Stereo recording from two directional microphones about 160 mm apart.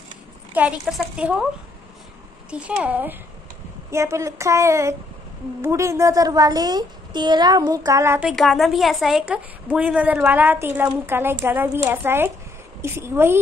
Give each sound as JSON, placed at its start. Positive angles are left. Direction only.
{"t": 0.6, "sound": "a woman's voice", "side_deg": -5}
{"t": 2.5, "sound": "a woman's voice", "side_deg": -5}
{"t": 8.2, "sound": "a woman's voice", "side_deg": 0}